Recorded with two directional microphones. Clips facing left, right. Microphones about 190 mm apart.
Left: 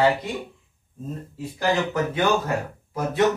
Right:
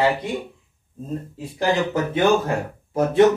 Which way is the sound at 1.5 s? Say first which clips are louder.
Right 2 dB; 25° right (ahead or behind).